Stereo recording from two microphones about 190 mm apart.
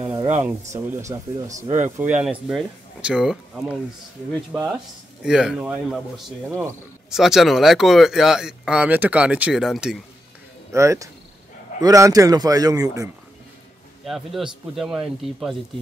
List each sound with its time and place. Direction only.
0.0 s rub: 15° right (ahead or behind)
0.4 s speech: 15° right (ahead or behind)
10.7 s a man's voice: 15° right (ahead or behind)
14.0 s speech: centre (ahead or behind)